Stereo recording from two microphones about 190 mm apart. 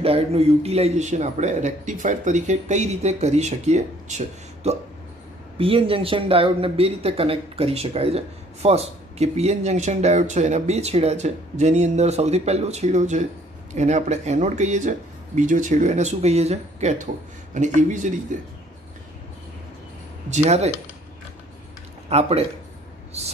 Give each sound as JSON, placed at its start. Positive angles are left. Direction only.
{"t": 0.0, "sound": "speech", "side_deg": -30}
{"t": 5.6, "sound": "speech", "side_deg": -30}
{"t": 20.2, "sound": "speech", "side_deg": -35}
{"t": 22.1, "sound": "speech", "side_deg": -35}